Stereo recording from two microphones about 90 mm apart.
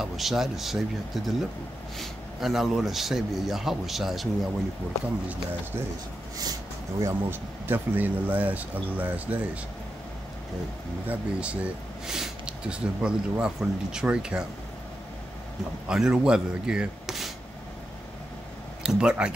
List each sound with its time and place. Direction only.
0.0 s speech: 5° right (ahead or behind)
7.0 s speech: 25° right (ahead or behind)
11.1 s speech: 15° right (ahead or behind)
15.9 s speech: 10° right (ahead or behind)
18.8 s speech: 10° right (ahead or behind)